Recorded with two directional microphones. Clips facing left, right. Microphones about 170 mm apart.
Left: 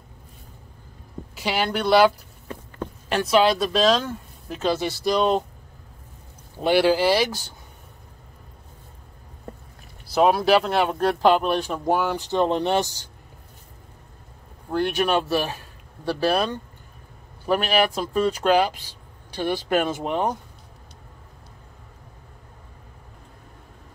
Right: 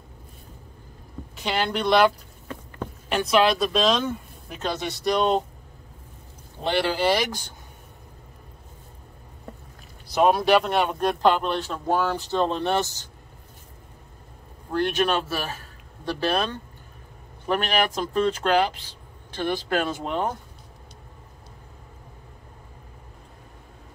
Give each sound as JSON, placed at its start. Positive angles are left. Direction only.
{"t": 1.3, "sound": "speech", "side_deg": 5}
{"t": 6.6, "sound": "speech", "side_deg": 10}
{"t": 10.0, "sound": "speech", "side_deg": 5}
{"t": 14.7, "sound": "speech", "side_deg": 10}